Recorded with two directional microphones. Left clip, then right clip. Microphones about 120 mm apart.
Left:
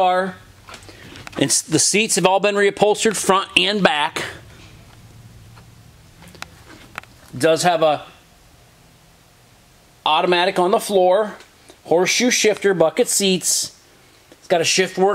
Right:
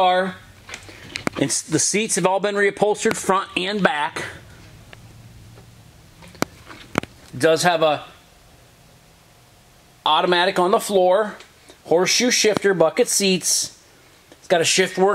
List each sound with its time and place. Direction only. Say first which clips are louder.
0.0 s speech: even; 5° right (ahead or behind)
1.4 s speech: left 5 dB; 20° left (ahead or behind)
7.3 s speech: left 1 dB; 5° left (ahead or behind)
10.0 s speech: left 1 dB; 5° left (ahead or behind)